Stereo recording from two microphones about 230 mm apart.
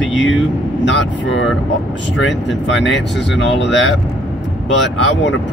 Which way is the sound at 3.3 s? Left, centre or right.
Left.